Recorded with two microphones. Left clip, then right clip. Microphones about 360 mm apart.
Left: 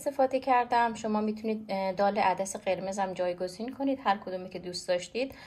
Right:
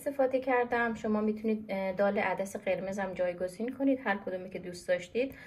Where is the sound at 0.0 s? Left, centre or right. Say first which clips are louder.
Left 2 dB; centre.